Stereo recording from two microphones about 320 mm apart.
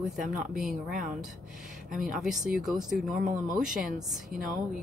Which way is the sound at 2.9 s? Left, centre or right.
Right.